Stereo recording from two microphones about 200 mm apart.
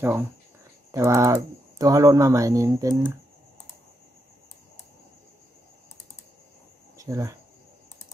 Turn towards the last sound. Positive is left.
turn(degrees=-15)  # may be behind; listen again after turning